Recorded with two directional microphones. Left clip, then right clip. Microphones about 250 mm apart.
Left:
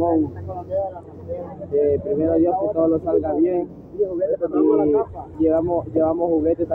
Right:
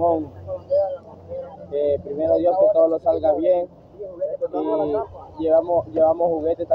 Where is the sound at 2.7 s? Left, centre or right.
Centre.